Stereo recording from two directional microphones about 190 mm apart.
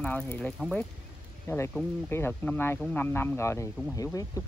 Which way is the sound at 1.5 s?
15° left (ahead or behind).